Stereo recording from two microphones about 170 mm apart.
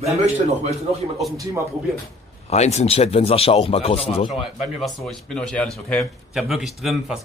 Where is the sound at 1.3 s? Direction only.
20° right (ahead or behind).